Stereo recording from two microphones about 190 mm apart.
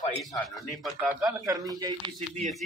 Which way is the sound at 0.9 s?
5° right (ahead or behind).